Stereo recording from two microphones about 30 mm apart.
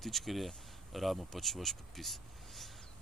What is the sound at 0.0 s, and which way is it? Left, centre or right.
Speech, centre.